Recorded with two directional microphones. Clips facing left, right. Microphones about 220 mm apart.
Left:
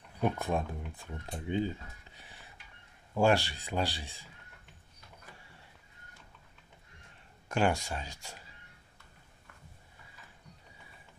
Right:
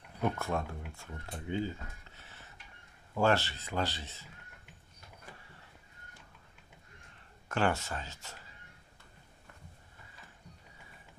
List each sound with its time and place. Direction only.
0.2 s speech: 15° left (ahead or behind)
2.1 s a sound: 15° left (ahead or behind)
3.2 s speech: 15° left (ahead or behind)
7.4 s speech: 15° left (ahead or behind)